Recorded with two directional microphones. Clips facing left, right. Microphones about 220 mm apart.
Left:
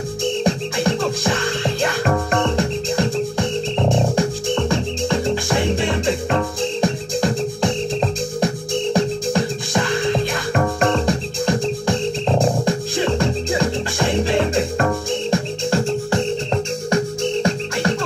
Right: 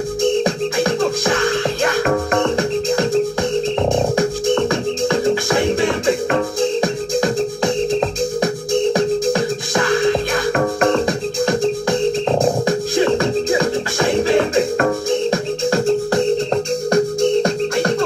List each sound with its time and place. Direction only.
16.9 s music: 35° right (ahead or behind)